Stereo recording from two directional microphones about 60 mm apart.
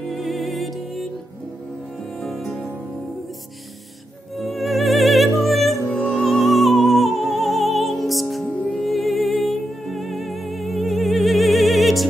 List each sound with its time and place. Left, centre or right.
0.1 s music: centre
2.2 s music: centre
4.4 s music: centre
5.9 s music: centre
6.1 s music: centre